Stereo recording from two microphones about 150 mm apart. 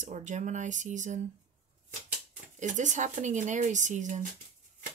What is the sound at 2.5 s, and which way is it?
Speech, 55° right (ahead or behind).